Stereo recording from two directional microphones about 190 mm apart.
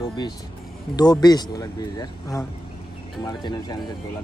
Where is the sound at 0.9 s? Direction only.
20° left (ahead or behind).